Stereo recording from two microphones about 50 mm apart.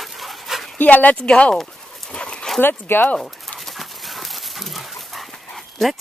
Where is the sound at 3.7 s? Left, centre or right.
Centre.